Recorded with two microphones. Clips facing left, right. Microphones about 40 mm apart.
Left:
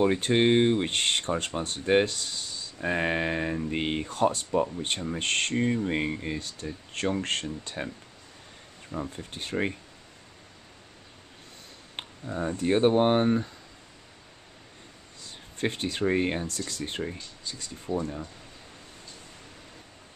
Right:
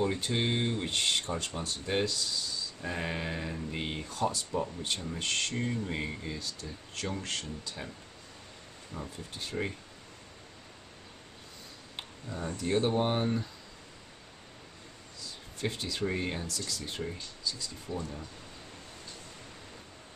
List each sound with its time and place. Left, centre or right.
0.0 s speech: left
5.6 s speech: left
9.1 s speech: left
12.0 s a sound: left
12.5 s speech: left
15.1 s speech: left
17.9 s speech: left